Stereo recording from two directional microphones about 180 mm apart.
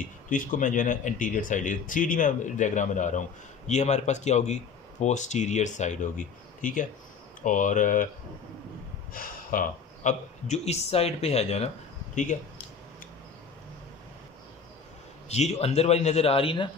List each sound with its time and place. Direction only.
0.3 s speech: 45° left (ahead or behind)
9.1 s speech: 50° left (ahead or behind)
15.2 s speech: 35° left (ahead or behind)